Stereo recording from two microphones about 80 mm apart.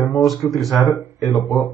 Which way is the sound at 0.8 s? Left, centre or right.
Left.